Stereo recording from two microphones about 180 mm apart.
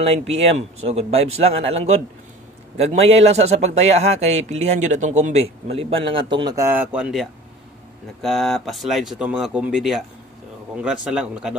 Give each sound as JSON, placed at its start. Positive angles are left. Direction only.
{"t": 0.1, "sound": "speech", "side_deg": -35}